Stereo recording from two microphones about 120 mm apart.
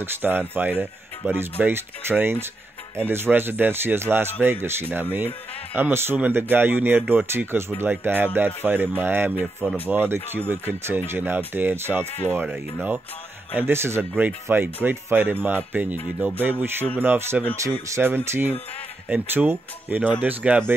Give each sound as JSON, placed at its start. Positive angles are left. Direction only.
{"t": 0.0, "sound": "speech", "side_deg": -15}
{"t": 13.6, "sound": "speech", "side_deg": -20}
{"t": 17.5, "sound": "speech", "side_deg": 15}
{"t": 17.8, "sound": "speech", "side_deg": -20}